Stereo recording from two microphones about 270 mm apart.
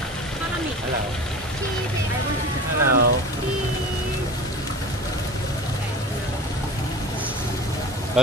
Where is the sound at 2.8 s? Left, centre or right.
Right.